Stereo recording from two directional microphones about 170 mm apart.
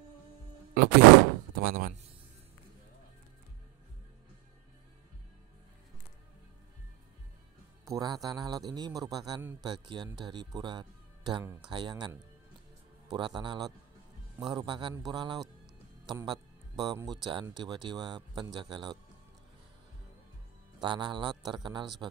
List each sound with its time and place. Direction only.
0.8 s a sound: 60° right (ahead or behind)
1.5 s speech: 60° right (ahead or behind)
7.8 s speech: 20° right (ahead or behind)
13.1 s speech: 30° right (ahead or behind)
20.8 s speech: 25° right (ahead or behind)